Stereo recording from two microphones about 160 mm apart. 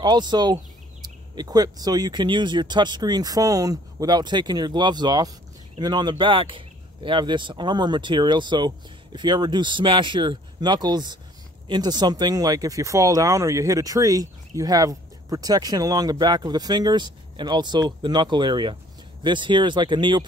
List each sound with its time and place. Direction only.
0.0 s speech: 25° right (ahead or behind)